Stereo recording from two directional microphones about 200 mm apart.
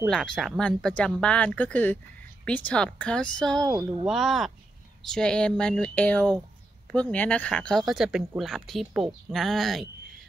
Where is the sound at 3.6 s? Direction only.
20° right (ahead or behind).